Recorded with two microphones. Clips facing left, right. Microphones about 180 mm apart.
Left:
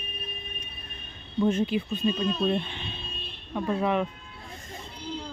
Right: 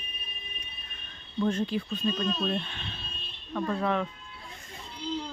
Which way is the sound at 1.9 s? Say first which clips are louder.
Left 3 dB; 10° left (ahead or behind).